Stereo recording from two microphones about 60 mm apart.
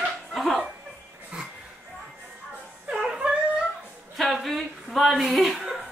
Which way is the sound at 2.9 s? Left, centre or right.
Centre.